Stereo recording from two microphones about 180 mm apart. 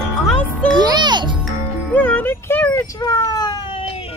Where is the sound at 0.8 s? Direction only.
25° right (ahead or behind).